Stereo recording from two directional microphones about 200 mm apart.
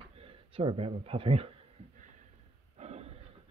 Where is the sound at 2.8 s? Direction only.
30° right (ahead or behind).